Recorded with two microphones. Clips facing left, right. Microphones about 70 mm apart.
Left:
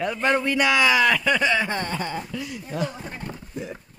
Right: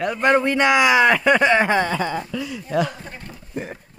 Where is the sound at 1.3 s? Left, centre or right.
Right.